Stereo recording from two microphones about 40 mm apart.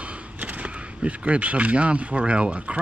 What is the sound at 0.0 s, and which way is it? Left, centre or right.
Speech, right.